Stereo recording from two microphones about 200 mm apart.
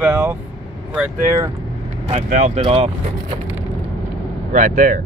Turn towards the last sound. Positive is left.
turn(degrees=-40)  # may be behind; listen again after turning